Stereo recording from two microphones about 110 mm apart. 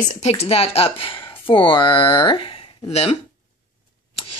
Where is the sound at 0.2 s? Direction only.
70° left (ahead or behind).